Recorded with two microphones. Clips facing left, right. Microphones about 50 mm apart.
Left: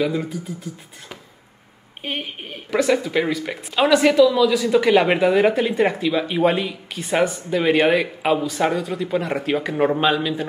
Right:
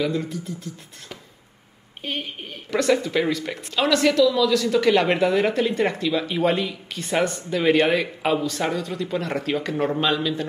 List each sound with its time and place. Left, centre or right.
0.0 s speech: centre
2.8 s speech: centre